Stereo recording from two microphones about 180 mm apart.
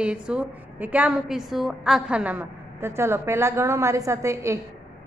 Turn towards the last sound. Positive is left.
turn(degrees=-15)  # may be behind; listen again after turning